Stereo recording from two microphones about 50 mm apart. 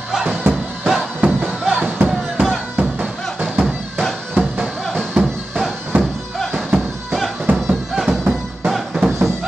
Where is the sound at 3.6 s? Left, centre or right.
Centre.